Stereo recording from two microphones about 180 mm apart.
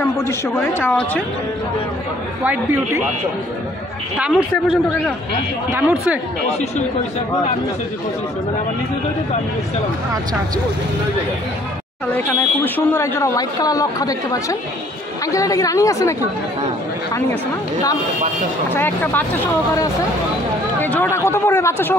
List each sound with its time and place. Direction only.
0.0 s speech: 15° left (ahead or behind)
2.4 s speech: 10° right (ahead or behind)
4.4 s a man's voice: 5° right (ahead or behind)
12.3 s speech: 10° left (ahead or behind)
18.8 s speech: 10° left (ahead or behind)
20.8 s speech: 10° left (ahead or behind)